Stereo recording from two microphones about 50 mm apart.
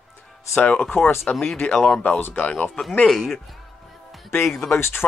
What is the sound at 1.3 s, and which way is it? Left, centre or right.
Speech, left.